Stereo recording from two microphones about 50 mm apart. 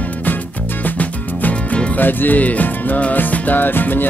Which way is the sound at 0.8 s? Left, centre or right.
Left.